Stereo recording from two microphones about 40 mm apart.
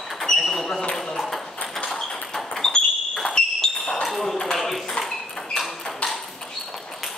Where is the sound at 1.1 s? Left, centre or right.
Centre.